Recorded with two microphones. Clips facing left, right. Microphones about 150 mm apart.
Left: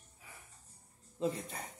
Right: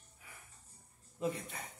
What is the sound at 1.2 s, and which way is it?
Speech, 35° left (ahead or behind).